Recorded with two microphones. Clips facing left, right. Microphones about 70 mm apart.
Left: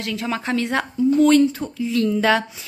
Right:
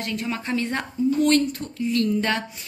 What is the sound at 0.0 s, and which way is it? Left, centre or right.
Speech, left.